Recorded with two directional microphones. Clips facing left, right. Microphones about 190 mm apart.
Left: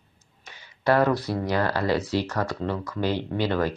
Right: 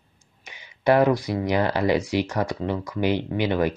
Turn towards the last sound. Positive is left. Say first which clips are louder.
# right 2 dB
turn(degrees=-15)  # may be behind; listen again after turning